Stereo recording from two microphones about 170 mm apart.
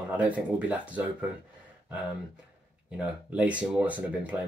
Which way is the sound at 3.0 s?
5° right (ahead or behind).